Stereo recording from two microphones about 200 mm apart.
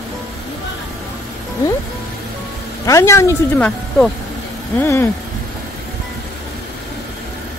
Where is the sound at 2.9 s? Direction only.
15° left (ahead or behind).